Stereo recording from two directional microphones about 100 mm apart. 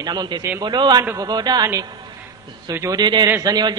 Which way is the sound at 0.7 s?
45° right (ahead or behind).